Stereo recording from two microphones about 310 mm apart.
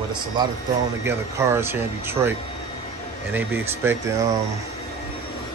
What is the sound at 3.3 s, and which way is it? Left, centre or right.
Speech, centre.